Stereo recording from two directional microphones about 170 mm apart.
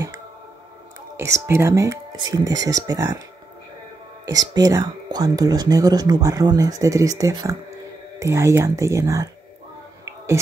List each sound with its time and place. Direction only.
1.1 s speech: 15° right (ahead or behind)
4.3 s speech: 20° right (ahead or behind)